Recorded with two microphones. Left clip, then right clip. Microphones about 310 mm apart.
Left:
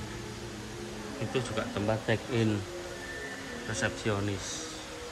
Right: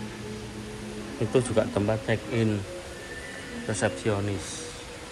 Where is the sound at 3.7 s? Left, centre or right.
Centre.